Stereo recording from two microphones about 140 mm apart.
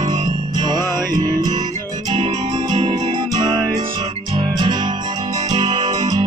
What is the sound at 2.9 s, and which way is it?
Music, 35° right (ahead or behind).